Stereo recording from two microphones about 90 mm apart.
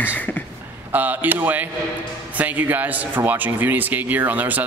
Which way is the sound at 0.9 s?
20° right (ahead or behind).